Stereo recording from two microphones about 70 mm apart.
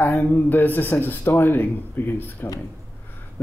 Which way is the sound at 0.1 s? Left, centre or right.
Centre.